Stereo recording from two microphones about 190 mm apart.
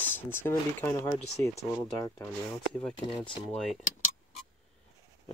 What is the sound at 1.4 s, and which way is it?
Speech, 35° right (ahead or behind).